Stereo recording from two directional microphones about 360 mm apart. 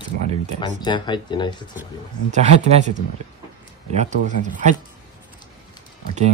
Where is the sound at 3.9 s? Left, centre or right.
Centre.